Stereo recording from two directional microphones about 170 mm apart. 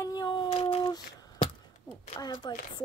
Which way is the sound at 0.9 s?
20° left (ahead or behind).